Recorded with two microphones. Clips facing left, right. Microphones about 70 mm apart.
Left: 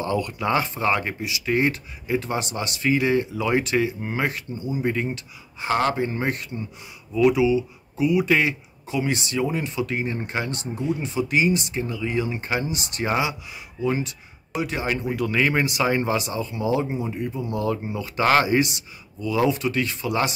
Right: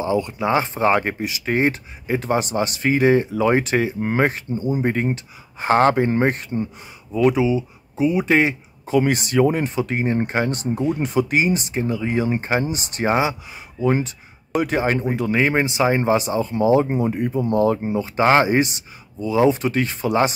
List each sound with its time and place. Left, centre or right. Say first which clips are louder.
0.0 s speech: right 4 dB; centre
9.0 s speech: right 5 dB; right